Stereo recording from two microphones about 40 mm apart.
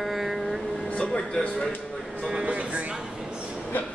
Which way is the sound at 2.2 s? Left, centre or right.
Centre.